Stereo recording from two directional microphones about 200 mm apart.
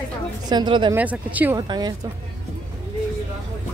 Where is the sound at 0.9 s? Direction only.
5° right (ahead or behind).